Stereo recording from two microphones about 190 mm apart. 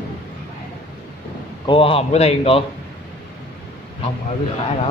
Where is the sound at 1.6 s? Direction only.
30° left (ahead or behind).